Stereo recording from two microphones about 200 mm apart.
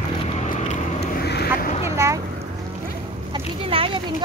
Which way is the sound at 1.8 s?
15° right (ahead or behind).